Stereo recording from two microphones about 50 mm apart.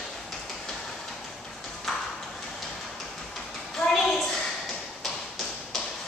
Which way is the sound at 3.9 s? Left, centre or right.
Centre.